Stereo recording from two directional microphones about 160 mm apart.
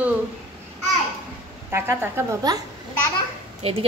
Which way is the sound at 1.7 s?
15° right (ahead or behind).